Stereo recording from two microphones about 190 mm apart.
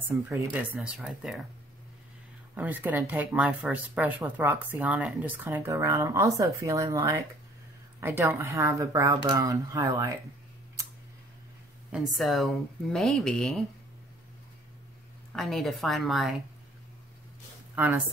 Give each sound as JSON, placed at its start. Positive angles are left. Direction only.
{"t": 0.3, "sound": "speech", "side_deg": -10}
{"t": 2.5, "sound": "speech", "side_deg": -10}
{"t": 11.9, "sound": "speech", "side_deg": 0}
{"t": 15.3, "sound": "speech", "side_deg": 0}
{"t": 17.7, "sound": "speech", "side_deg": -10}